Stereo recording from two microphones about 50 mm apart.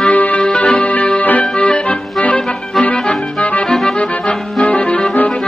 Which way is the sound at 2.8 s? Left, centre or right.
Centre.